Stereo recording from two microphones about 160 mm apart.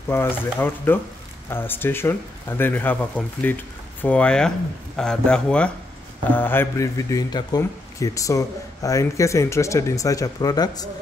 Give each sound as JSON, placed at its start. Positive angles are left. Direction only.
{"t": 0.1, "sound": "a man's voice", "side_deg": 15}